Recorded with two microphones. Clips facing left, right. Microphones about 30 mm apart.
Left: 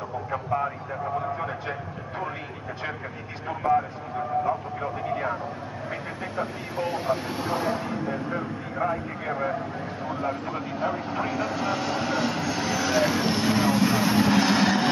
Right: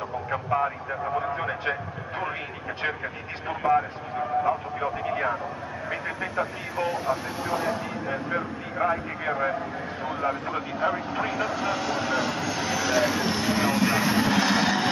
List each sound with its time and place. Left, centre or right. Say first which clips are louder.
0.3 s speech: right 2 dB; right
3.4 s speech: even; right
6.3 s speech: left 1 dB; centre
8.4 s speech: right 1 dB; centre